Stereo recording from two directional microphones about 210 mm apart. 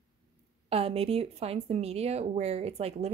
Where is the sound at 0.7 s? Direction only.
30° right (ahead or behind).